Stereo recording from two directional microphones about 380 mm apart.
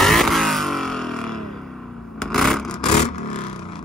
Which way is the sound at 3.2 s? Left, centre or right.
Centre.